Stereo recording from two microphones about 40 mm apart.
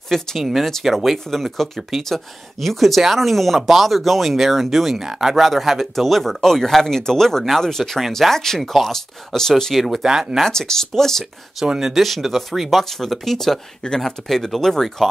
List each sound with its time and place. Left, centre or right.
0.1 s speech: centre
9.8 s speech: centre
10.4 s speech: centre
11.6 s speech: centre
11.9 s speech: centre